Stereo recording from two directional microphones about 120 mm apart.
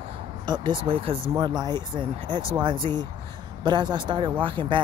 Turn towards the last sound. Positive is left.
turn(degrees=-45)  # may be behind; listen again after turning